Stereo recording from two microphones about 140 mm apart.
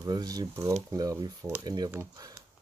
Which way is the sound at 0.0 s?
25° right (ahead or behind).